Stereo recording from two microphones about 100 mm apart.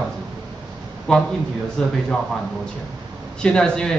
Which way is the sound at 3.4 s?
10° left (ahead or behind).